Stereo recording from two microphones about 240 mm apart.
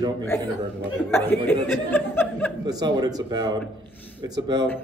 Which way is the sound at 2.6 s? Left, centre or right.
Centre.